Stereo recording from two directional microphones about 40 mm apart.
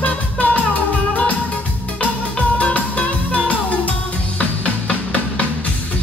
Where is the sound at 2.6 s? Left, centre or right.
Left.